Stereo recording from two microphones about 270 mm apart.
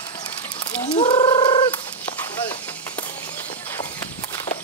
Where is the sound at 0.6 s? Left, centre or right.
Centre.